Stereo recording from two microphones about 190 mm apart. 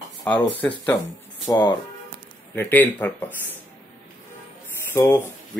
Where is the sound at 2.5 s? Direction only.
10° left (ahead or behind).